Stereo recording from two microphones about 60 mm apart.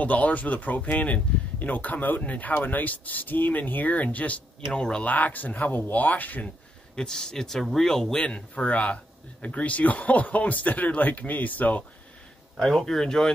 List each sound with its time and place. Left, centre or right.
0.0 s a man's voice: left
4.6 s speech: centre
5.0 s a man's voice: left
7.0 s a man's voice: centre; by 11.8 s left
12.5 s speech: centre